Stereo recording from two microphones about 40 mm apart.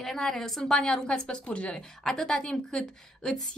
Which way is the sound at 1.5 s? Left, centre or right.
Left.